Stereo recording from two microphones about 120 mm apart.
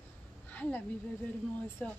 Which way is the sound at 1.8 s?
10° left (ahead or behind).